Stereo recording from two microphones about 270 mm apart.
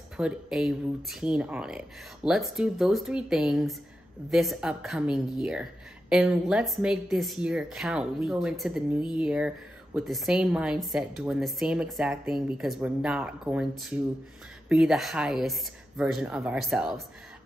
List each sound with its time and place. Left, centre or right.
0.2 s a woman's voice: centre